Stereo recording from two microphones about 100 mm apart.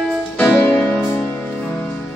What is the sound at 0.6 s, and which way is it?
Music, 20° left (ahead or behind).